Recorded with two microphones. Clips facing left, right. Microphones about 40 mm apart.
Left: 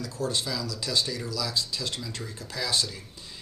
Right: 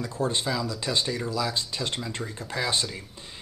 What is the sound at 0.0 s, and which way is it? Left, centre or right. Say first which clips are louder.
Speech: right 3 dB; right.